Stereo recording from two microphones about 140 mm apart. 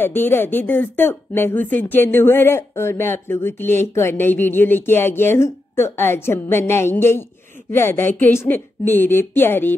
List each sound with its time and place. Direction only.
0.0 s speech: 15° left (ahead or behind)